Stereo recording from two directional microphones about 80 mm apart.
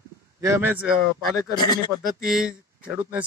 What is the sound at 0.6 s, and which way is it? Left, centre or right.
Speech, right.